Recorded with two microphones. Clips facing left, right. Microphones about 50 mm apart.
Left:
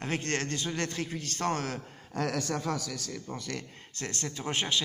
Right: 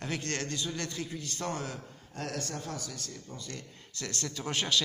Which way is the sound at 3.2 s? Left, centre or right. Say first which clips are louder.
Left 6 dB; left.